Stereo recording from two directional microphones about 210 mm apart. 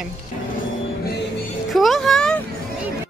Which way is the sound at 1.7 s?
Centre (ahead or behind).